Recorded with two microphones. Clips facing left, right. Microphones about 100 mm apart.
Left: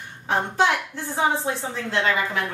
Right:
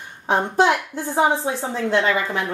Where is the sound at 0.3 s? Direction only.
15° right (ahead or behind).